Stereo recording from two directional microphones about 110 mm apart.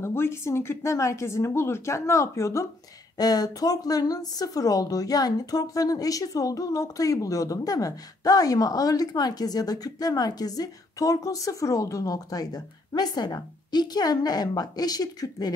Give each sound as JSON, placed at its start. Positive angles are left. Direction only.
{"t": 0.0, "sound": "speech", "side_deg": 25}